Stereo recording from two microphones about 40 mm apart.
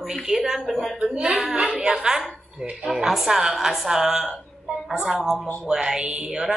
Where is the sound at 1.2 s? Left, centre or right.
Centre.